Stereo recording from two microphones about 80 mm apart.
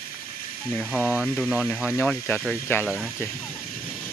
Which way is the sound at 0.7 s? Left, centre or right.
Left.